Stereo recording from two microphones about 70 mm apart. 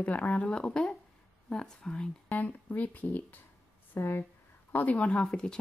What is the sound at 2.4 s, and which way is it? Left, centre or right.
Speech, left.